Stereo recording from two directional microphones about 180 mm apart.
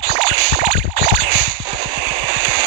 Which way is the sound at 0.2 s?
30° right (ahead or behind).